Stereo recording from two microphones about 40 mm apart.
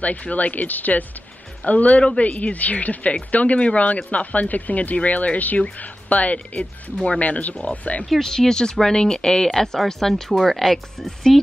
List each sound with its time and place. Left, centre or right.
0.0 s speech: left
8.1 s speech: centre